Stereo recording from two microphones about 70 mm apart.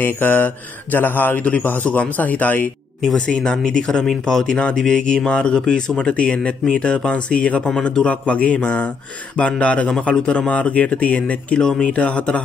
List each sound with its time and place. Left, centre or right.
0.0 s speech: left
3.3 s speech: centre